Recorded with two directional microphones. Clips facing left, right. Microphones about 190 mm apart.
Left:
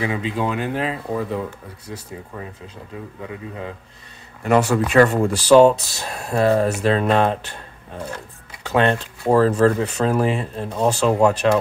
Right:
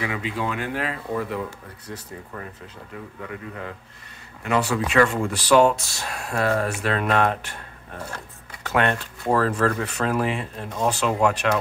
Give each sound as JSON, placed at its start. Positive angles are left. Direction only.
{"t": 0.0, "sound": "speech", "side_deg": 25}
{"t": 4.4, "sound": "speech", "side_deg": 45}
{"t": 8.6, "sound": "speech", "side_deg": 25}
{"t": 10.1, "sound": "speech", "side_deg": 40}